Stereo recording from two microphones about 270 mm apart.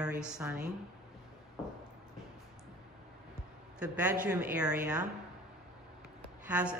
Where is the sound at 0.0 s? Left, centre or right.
Centre.